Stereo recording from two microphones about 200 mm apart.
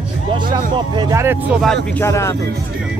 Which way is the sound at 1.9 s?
15° left (ahead or behind).